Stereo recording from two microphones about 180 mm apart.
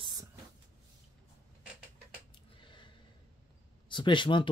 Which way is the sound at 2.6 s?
25° left (ahead or behind).